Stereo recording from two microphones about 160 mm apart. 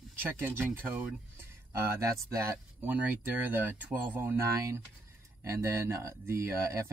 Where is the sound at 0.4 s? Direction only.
15° right (ahead or behind).